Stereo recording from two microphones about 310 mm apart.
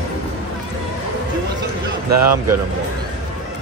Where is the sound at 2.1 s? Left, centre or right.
Right.